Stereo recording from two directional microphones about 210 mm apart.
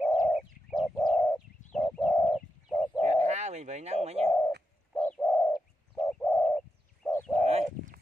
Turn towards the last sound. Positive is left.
turn(degrees=-30)  # may be behind; listen again after turning